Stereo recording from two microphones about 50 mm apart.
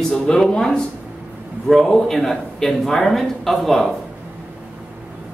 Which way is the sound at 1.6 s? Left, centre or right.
Centre.